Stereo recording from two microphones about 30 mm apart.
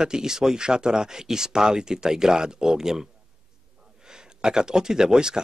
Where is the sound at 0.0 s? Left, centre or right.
Right.